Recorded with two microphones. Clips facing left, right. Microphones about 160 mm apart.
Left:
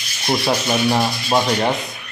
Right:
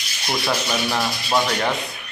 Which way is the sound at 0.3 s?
25° left (ahead or behind).